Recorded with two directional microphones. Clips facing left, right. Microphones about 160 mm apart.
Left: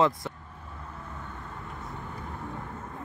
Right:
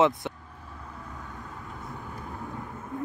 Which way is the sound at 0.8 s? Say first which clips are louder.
Even; centre (ahead or behind).